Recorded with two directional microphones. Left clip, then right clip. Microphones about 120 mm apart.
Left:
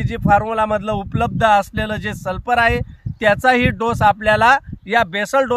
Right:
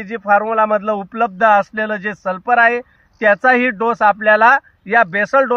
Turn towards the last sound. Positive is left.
turn(degrees=25)  # may be behind; listen again after turning